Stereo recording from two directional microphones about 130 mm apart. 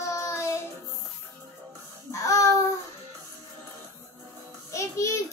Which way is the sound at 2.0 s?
25° left (ahead or behind).